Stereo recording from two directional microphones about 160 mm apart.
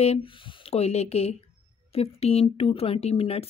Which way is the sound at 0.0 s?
40° left (ahead or behind).